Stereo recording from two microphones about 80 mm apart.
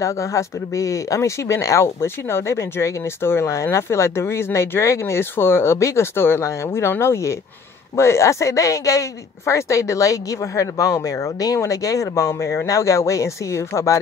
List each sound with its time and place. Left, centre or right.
0.0 s speech: left